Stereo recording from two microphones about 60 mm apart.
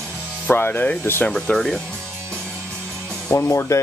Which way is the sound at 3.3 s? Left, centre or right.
Left.